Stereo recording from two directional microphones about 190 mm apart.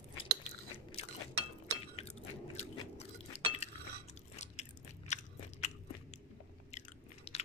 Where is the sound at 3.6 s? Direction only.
35° left (ahead or behind).